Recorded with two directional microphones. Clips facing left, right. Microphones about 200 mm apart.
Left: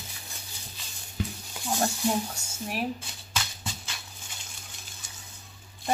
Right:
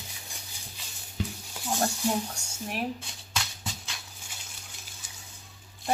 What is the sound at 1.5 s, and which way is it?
Dishes, 5° right (ahead or behind).